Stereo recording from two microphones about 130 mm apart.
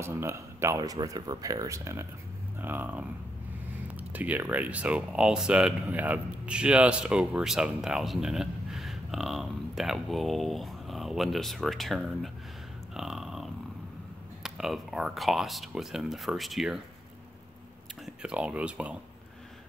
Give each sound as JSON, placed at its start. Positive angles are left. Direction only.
{"t": 0.0, "sound": "speech", "side_deg": -20}
{"t": 12.9, "sound": "a sound", "side_deg": -5}
{"t": 14.4, "sound": "speech", "side_deg": -5}
{"t": 18.0, "sound": "speech", "side_deg": -5}